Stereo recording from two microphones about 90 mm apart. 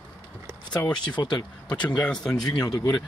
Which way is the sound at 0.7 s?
50° left (ahead or behind).